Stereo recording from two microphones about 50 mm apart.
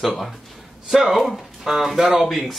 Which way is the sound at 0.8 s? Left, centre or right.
Centre.